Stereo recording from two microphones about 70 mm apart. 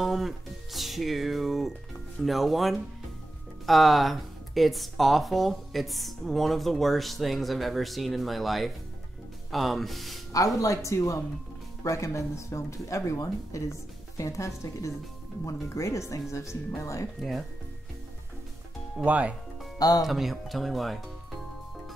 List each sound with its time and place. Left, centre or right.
0.0 s music: centre
0.7 s speech: centre
10.6 s speech: left
17.2 s speech: centre
19.0 s speech: right
19.8 s speech: left
20.1 s speech: centre